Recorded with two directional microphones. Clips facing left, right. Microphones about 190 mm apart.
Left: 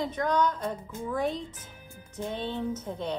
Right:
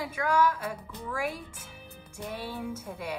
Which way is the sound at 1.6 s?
10° right (ahead or behind).